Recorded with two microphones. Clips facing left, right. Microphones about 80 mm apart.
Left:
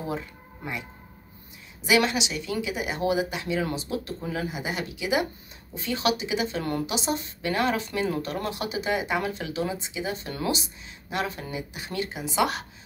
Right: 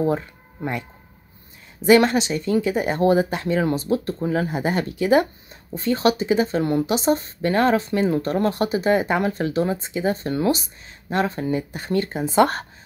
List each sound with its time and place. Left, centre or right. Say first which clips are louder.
1.8 s a woman's voice: right 8 dB; right